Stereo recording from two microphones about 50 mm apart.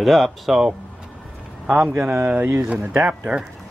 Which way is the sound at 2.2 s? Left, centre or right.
Right.